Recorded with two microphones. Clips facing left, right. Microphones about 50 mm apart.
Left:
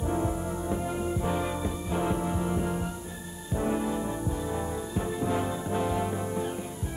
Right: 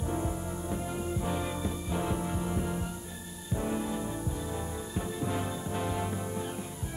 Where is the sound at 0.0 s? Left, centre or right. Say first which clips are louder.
Left 4 dB; centre.